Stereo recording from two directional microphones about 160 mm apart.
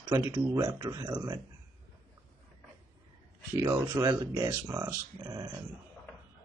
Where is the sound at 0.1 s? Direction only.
25° right (ahead or behind).